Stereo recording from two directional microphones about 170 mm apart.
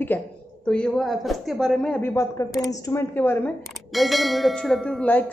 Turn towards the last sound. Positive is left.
turn(degrees=5)  # may be behind; listen again after turning